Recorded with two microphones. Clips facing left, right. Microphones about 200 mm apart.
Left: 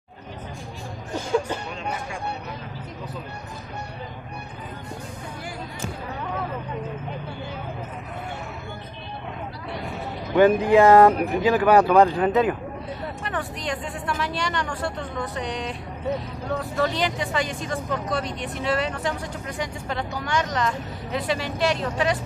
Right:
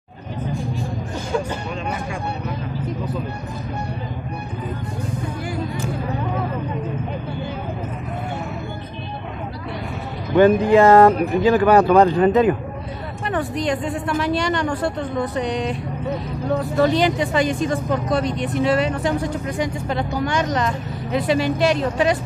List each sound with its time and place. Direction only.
10.3 s speech: 10° left (ahead or behind)
13.3 s a woman's voice: 20° right (ahead or behind)
16.8 s speech: 15° right (ahead or behind)